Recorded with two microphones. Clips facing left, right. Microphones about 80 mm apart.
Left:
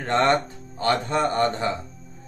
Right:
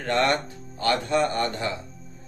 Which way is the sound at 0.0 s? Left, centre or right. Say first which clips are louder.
Left 3 dB; left.